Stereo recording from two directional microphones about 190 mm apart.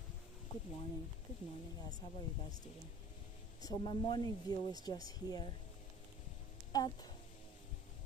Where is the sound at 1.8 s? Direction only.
20° left (ahead or behind).